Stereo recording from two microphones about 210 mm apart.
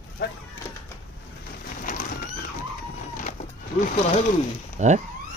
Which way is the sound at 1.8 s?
40° left (ahead or behind).